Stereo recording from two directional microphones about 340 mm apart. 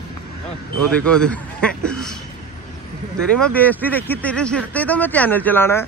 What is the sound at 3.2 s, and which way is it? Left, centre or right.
A man's voice, centre.